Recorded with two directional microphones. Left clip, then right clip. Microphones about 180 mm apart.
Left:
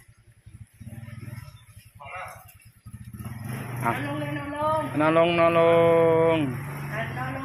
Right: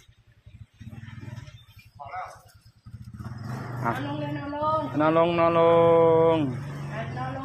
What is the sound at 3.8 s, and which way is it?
Speech, centre (ahead or behind).